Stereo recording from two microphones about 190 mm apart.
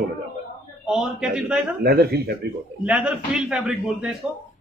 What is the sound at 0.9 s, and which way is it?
Speech, centre (ahead or behind).